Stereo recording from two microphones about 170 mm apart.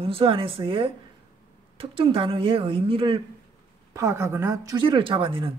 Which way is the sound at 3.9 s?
15° right (ahead or behind).